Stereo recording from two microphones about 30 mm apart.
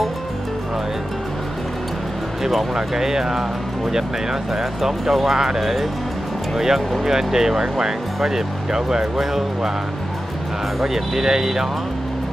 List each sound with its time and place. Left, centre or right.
2.4 s speech: centre
5.6 s speech: centre
10.8 s speech: centre